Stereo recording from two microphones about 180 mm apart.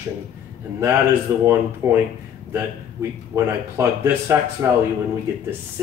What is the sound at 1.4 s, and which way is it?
A man's voice, 15° right (ahead or behind).